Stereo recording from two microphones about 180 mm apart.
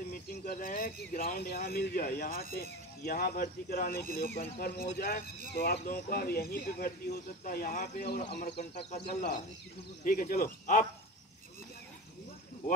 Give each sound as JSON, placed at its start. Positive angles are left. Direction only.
{"t": 0.1, "sound": "speech", "side_deg": 50}
{"t": 10.0, "sound": "speech", "side_deg": 50}